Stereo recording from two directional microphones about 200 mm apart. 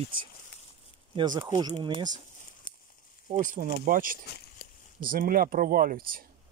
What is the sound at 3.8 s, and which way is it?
Speech, 45° right (ahead or behind).